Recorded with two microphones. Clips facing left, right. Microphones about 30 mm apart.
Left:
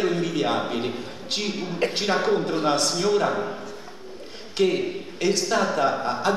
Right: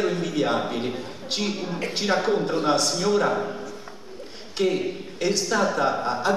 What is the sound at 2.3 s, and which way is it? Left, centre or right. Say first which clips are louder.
A man's voice: even; centre.